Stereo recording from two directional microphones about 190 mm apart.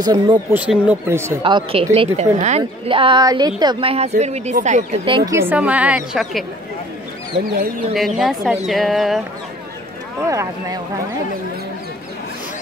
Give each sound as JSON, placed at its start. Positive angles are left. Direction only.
{"t": 0.0, "sound": "a woman's voice", "side_deg": -20}
{"t": 1.4, "sound": "a woman's voice", "side_deg": -30}
{"t": 5.0, "sound": "a woman's voice", "side_deg": -25}
{"t": 5.3, "sound": "speech", "side_deg": -10}
{"t": 7.3, "sound": "speech", "side_deg": -55}
{"t": 7.9, "sound": "speech", "side_deg": 0}
{"t": 10.3, "sound": "speech", "side_deg": -15}